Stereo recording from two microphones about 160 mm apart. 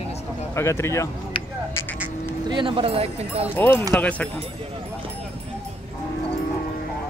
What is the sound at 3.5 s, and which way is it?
Speech, 10° left (ahead or behind).